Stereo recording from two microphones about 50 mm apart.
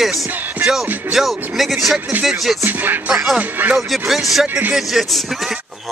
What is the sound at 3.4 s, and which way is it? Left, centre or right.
Speech, right.